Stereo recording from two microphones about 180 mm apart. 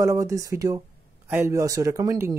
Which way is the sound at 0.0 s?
15° right (ahead or behind).